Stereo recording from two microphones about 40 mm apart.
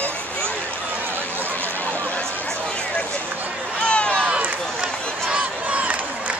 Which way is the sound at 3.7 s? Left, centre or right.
Left.